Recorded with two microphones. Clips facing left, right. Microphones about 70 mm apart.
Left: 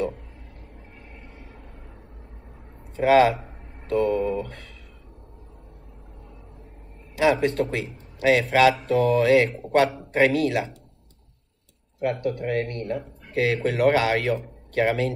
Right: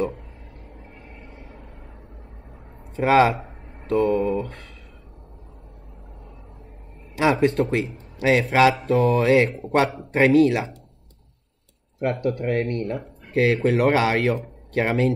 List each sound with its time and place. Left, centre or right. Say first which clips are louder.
0.9 s vehicle: right 2 dB; centre
3.0 s speech: even; right
3.9 s mantra: right 2 dB; centre
4.2 s a sound: right 2 dB; centre
7.2 s a sound: right 1 dB; right
7.7 s speech: right 5 dB; right
9.8 s a man's voice: right 1 dB; centre
10.2 s speech: right 5 dB; right
12.1 s speech: right 2 dB; right